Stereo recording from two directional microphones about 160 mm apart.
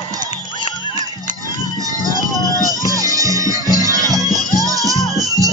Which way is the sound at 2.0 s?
20° right (ahead or behind).